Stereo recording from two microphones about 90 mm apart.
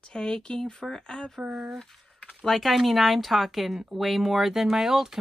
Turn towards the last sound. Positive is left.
turn(degrees=-5)  # may be behind; listen again after turning